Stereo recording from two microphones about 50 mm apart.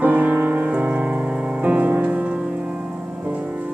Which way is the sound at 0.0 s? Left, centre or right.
Right.